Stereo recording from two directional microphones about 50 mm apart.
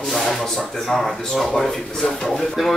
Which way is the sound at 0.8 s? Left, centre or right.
Centre.